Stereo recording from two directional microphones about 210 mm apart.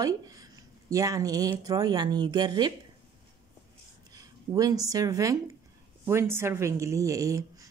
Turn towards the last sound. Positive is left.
turn(degrees=-15)  # may be behind; listen again after turning